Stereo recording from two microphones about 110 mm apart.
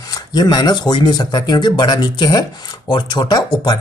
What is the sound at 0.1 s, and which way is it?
Speech, 40° left (ahead or behind).